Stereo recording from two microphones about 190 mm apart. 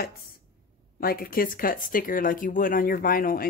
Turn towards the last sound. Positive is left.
turn(degrees=50)  # may be behind; listen again after turning